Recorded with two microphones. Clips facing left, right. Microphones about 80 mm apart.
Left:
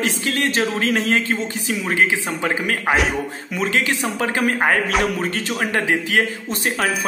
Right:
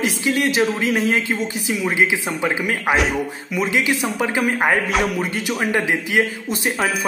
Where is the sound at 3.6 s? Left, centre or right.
Centre.